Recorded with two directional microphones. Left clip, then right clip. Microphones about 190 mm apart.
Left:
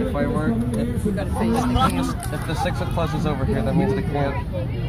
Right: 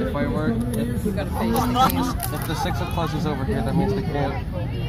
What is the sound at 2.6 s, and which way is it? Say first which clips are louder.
Speech: left 2 dB; 25° left (ahead or behind).